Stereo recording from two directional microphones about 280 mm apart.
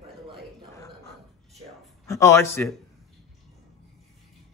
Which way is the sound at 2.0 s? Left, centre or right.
Centre.